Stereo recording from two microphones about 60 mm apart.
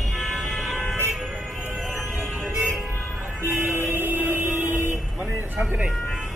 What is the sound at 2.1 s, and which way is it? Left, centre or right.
Music, right.